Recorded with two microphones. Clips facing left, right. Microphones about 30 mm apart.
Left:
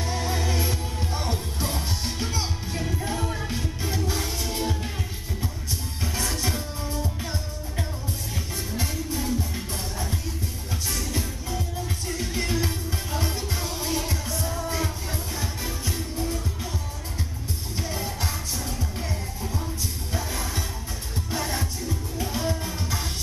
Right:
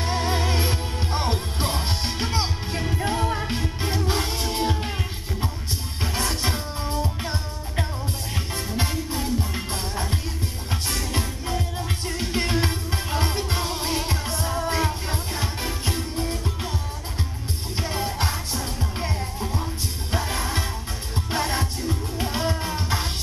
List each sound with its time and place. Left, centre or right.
0.0 s music: right
6.0 s music: right
10.7 s music: right
17.7 s music: right
19.4 s music: right
20.1 s music: right